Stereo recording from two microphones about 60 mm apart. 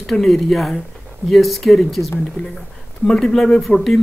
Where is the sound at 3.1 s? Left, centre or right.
Centre.